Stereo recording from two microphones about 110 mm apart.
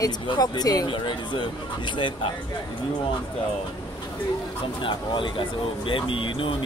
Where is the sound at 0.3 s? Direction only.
35° left (ahead or behind).